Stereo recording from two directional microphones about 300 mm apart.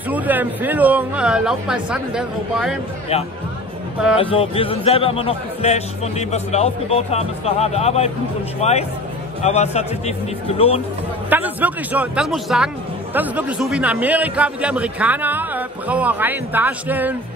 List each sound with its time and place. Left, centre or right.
0.1 s a man's voice: centre
4.2 s speech: centre
11.2 s a man's voice: centre